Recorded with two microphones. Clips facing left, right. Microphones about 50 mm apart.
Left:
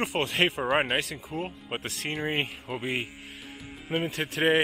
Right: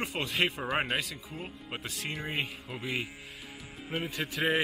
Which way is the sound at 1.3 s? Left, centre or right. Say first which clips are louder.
Left 8 dB; left.